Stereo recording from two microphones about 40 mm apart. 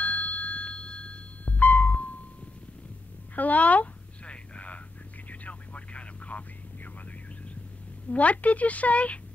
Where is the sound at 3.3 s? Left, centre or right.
Left.